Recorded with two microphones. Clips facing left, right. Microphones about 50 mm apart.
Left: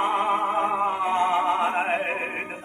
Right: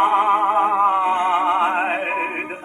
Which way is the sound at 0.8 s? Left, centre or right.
Right.